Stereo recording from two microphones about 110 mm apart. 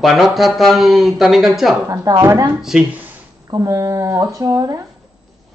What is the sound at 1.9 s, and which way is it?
Speech, 30° right (ahead or behind).